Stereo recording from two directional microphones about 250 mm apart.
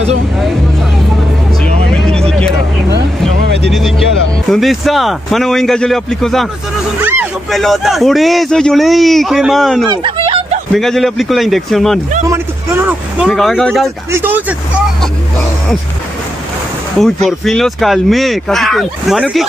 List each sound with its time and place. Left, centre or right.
1.9 s vehicle: centre
3.4 s music: right
4.5 s a man's voice: centre
9.8 s a sound: right
10.7 s a man's voice: centre
12.3 s vehicle: centre
13.8 s speech: centre
17.0 s a man's voice: centre